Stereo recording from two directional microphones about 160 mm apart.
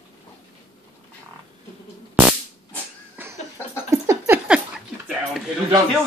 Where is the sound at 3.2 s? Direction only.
10° right (ahead or behind).